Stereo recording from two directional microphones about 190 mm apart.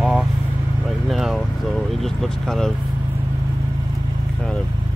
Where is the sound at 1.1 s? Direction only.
Centre (ahead or behind).